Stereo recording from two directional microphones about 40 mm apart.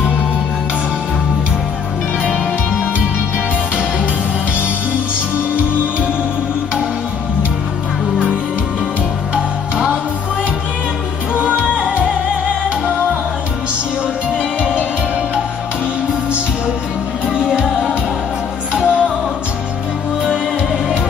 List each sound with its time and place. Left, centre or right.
9.3 s music: centre
11.3 s music: right
14.6 s music: right
17.3 s music: right